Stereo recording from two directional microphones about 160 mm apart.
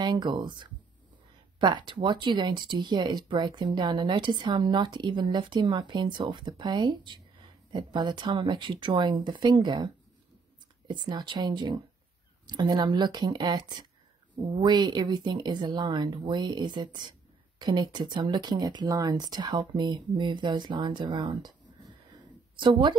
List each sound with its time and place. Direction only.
0.0 s speech: 30° right (ahead or behind)
10.9 s speech: 30° right (ahead or behind)